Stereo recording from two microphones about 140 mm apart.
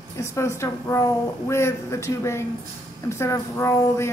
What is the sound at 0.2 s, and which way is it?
A woman's voice, 20° left (ahead or behind).